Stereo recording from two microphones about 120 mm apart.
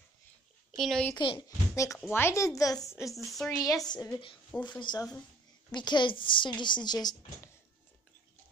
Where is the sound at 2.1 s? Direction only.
20° left (ahead or behind).